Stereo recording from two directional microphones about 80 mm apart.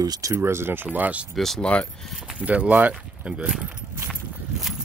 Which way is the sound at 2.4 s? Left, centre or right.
Centre.